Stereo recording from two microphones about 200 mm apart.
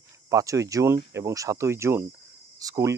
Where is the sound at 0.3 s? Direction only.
15° right (ahead or behind).